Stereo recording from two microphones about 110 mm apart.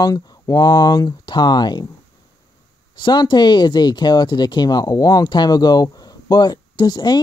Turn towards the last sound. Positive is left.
turn(degrees=40)  # may be behind; listen again after turning